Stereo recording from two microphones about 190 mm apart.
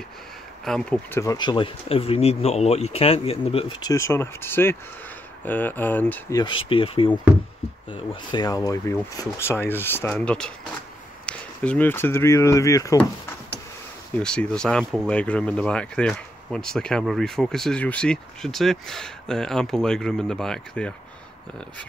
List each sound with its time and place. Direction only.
0.7 s speech: 5° left (ahead or behind)
1.2 s speech: 20° left (ahead or behind)
6.4 s speech: 25° left (ahead or behind)
14.1 s speech: 5° left (ahead or behind)